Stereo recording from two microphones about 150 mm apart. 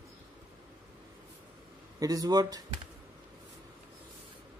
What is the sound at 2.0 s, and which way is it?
Speech, 25° right (ahead or behind).